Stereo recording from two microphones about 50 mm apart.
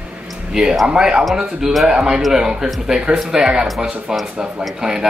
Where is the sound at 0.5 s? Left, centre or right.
Centre.